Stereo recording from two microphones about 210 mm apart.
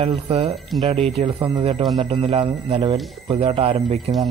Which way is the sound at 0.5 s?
Centre (ahead or behind).